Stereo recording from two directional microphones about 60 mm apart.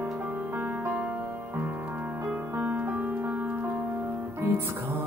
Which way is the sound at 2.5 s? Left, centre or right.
Right.